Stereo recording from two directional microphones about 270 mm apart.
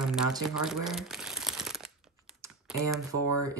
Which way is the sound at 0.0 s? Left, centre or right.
Centre.